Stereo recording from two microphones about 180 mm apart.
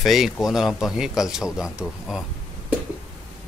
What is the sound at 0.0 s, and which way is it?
Speech, centre (ahead or behind).